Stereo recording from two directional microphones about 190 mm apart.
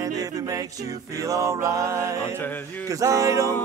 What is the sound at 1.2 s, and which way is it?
Music, 15° right (ahead or behind).